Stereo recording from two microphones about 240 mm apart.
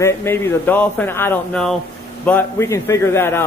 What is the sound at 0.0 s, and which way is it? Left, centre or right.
A man's voice, centre.